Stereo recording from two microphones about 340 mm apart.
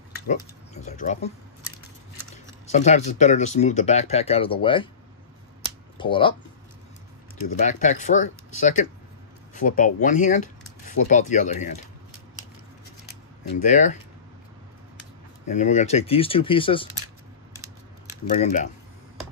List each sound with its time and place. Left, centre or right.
0.3 s speech: left
2.7 s speech: centre
5.9 s speech: centre
7.5 s speech: left
13.6 s speech: left
15.4 s speech: left
18.3 s speech: left